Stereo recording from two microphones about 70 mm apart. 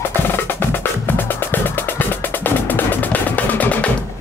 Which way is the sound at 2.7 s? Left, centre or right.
Left.